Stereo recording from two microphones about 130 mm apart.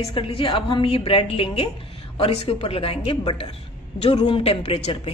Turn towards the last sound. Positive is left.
turn(degrees=50)  # may be behind; listen again after turning